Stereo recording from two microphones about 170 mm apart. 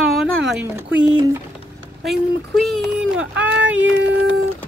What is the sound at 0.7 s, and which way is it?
Speech, 15° right (ahead or behind).